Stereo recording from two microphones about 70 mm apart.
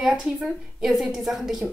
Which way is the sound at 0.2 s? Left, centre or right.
Centre.